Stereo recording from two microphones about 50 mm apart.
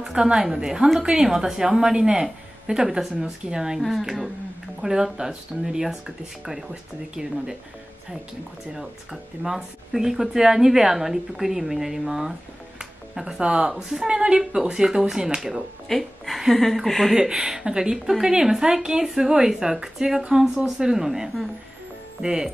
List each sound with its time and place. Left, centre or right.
0.0 s speech: centre
3.8 s a woman's voice: centre
8.7 s speech: centre
15.9 s a woman's voice: centre
17.1 s speech: centre